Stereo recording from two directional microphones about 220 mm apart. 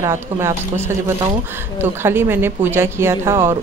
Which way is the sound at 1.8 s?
10° right (ahead or behind).